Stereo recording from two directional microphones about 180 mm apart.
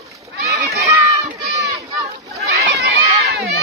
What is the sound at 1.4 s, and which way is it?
Crowd, 60° right (ahead or behind).